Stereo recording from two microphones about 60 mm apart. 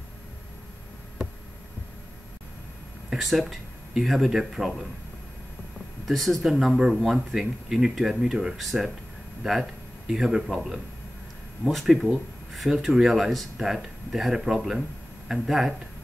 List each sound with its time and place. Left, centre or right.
3.1 s speech: centre
6.0 s speech: centre
6.6 s speech: centre